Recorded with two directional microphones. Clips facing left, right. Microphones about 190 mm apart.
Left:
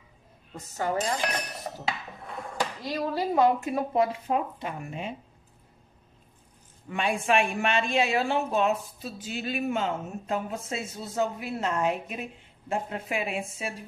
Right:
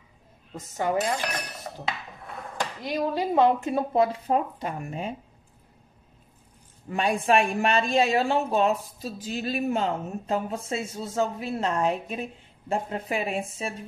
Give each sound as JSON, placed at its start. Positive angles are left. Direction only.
{"t": 0.7, "sound": "speech", "side_deg": -20}
{"t": 2.8, "sound": "a woman's voice", "side_deg": -15}
{"t": 6.9, "sound": "a woman's voice", "side_deg": -40}